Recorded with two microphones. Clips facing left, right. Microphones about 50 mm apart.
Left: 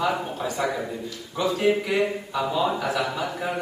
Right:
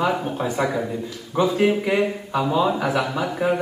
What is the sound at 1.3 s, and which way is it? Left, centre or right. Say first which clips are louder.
A man's voice: right 3 dB; right.